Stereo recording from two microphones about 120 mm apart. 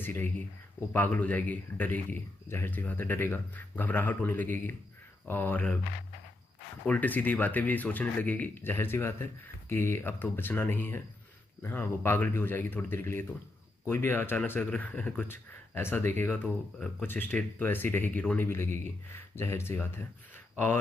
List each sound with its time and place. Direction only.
0.0 s speech: 15° left (ahead or behind)
6.9 s speech: 15° left (ahead or behind)